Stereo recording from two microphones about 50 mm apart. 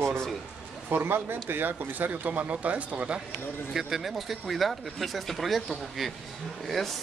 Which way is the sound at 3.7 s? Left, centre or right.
Centre.